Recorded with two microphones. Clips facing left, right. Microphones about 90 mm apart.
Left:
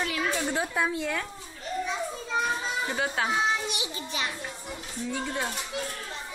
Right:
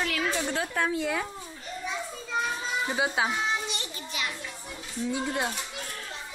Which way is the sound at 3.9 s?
35° left (ahead or behind).